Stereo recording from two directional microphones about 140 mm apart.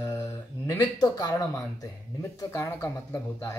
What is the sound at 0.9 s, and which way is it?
Speech, 30° left (ahead or behind).